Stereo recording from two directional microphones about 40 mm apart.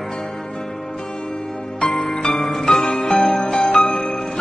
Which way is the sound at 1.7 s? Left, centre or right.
Centre.